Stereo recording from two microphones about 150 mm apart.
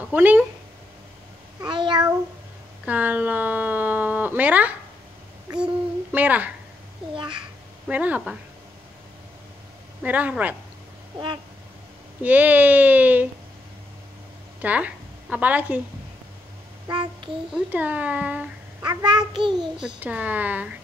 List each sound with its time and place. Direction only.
0.1 s speech: 10° right (ahead or behind)
1.6 s a sound: 30° right (ahead or behind)
2.8 s a sound: 10° right (ahead or behind)
6.1 s speech: 10° right (ahead or behind)
7.2 s babbling: 30° right (ahead or behind)
7.9 s speech: 10° right (ahead or behind)
10.0 s speech: 10° right (ahead or behind)
12.2 s speech: 10° right (ahead or behind)
14.6 s a woman's voice: 10° right (ahead or behind)
16.8 s a sound: 30° right (ahead or behind)
17.6 s speech: 10° right (ahead or behind)
18.8 s a child's voice: 25° right (ahead or behind)
20.0 s speech: 10° right (ahead or behind)